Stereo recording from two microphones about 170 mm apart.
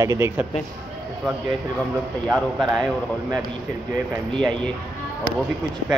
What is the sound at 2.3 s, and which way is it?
Speech, centre (ahead or behind).